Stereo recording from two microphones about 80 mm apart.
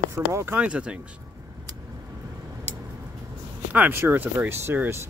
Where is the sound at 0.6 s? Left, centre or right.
Centre.